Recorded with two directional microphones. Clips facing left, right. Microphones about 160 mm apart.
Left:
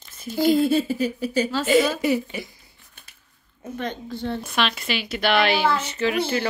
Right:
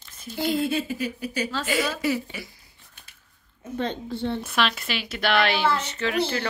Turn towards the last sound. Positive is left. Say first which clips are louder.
# left 3 dB
turn(degrees=10)  # may be behind; listen again after turning